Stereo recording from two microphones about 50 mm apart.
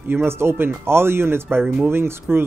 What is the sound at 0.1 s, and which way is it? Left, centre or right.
Speech, right.